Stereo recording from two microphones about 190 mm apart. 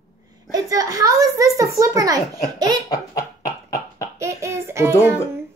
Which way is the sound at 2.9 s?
15° left (ahead or behind).